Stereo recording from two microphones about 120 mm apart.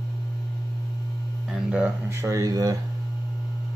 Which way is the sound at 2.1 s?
25° right (ahead or behind).